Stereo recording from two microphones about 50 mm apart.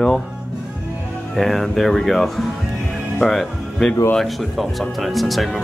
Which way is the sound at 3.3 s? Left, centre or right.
Centre.